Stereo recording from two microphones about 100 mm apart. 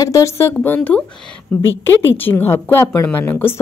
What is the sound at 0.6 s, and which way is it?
A woman's voice, 15° left (ahead or behind).